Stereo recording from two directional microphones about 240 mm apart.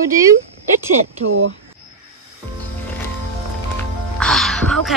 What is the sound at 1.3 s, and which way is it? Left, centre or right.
Speech, right.